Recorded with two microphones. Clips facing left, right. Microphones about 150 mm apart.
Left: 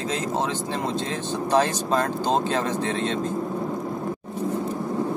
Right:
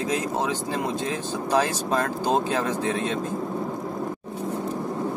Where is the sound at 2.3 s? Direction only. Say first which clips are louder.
Right 1 dB; 10° right (ahead or behind).